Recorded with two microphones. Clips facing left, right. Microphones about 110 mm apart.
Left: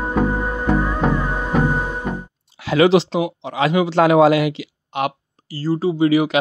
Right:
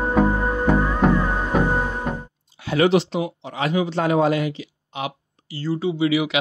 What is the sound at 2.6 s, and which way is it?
Speech, 90° left.